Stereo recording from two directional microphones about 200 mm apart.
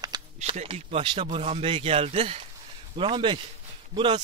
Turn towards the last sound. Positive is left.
turn(degrees=-25)  # may be behind; listen again after turning